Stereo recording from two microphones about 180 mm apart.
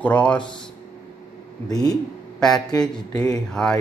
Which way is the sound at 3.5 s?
5° left (ahead or behind).